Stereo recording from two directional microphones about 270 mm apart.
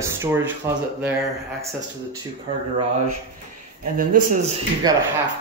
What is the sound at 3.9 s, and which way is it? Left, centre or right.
A man's voice, right.